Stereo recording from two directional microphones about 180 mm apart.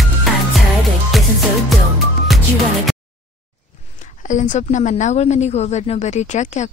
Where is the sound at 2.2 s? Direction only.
Centre (ahead or behind).